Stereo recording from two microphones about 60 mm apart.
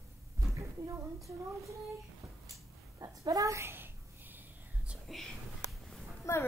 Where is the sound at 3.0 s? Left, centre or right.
Right.